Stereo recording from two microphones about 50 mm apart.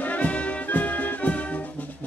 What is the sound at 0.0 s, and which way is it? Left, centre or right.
Music, left.